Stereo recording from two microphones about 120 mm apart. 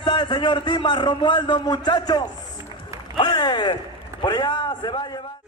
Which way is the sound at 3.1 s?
40° left (ahead or behind).